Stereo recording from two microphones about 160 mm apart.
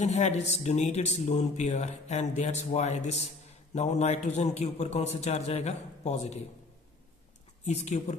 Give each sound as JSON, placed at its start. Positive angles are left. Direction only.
{"t": 0.0, "sound": "speech", "side_deg": 45}
{"t": 7.6, "sound": "speech", "side_deg": 45}